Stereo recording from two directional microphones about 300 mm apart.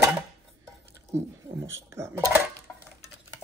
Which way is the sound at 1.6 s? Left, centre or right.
Centre.